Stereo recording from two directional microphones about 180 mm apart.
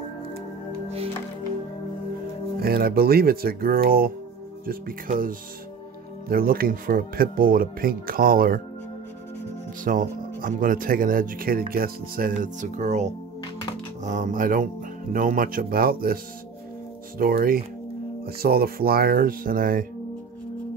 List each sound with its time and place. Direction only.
2.6 s speech: 60° right (ahead or behind)
9.8 s speech: 50° right (ahead or behind)
17.2 s speech: 55° right (ahead or behind)